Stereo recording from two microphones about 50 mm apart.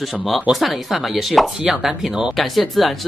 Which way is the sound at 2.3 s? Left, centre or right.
Centre.